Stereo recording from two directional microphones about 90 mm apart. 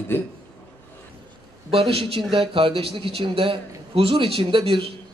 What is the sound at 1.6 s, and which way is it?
A man's voice, 90° right.